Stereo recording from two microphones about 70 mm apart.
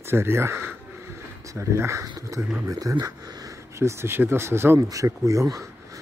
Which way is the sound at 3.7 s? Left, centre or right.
Right.